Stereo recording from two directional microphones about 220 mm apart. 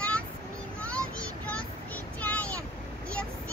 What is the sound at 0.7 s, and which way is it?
Child singing, 5° left (ahead or behind).